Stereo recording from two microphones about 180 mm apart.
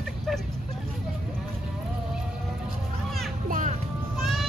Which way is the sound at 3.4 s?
50° right (ahead or behind).